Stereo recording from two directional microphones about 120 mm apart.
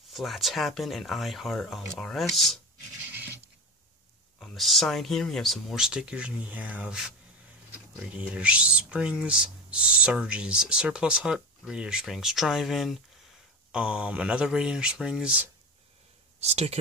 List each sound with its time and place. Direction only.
0.1 s speech: centre (ahead or behind)
4.4 s speech: centre (ahead or behind)
16.3 s speech: 60° right (ahead or behind)